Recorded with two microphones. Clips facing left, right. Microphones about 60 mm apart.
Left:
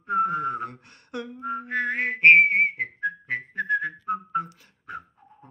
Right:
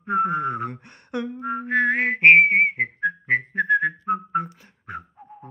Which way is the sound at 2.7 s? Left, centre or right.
Right.